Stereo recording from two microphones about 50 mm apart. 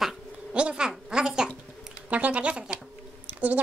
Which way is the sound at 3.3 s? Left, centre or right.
Right.